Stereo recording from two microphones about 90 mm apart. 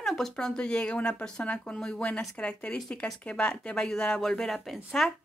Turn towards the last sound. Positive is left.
turn(degrees=0)  # may be behind; listen again after turning